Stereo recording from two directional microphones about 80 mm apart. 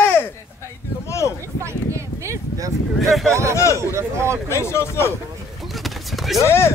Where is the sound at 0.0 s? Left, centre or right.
Left.